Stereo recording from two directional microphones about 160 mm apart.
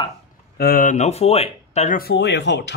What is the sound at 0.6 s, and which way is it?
Speech, 60° left (ahead or behind).